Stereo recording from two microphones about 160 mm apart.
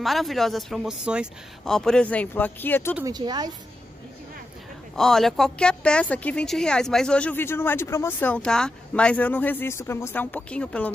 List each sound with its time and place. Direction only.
0.0 s speech: centre (ahead or behind)
3.1 s speech: 25° right (ahead or behind)
4.9 s a woman's voice: 5° left (ahead or behind)